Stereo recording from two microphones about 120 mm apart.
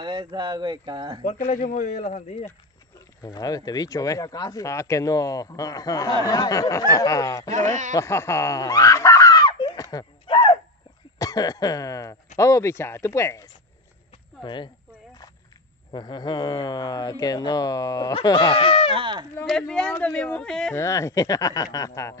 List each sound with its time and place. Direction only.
0.0 s speech: 40° right (ahead or behind)
1.2 s a man's voice: 90° left; by 2.3 s 70° left (ahead or behind)
3.2 s speech: 30° left (ahead or behind)
7.5 s speech: 85° right
7.9 s screaming: 20° left (ahead or behind)
10.2 s a sound: 50° left (ahead or behind)
11.1 s cough: 30° left (ahead or behind)
12.4 s speech: 25° left (ahead or behind)
14.4 s speech: 40° left (ahead or behind)
15.9 s speech: 40° left (ahead or behind)
18.9 s speech: 40° right (ahead or behind)
19.4 s speech: 5° left (ahead or behind)
20.7 s speech: 25° left (ahead or behind)